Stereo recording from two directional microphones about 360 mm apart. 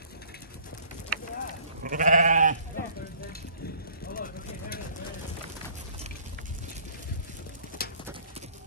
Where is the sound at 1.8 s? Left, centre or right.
Right.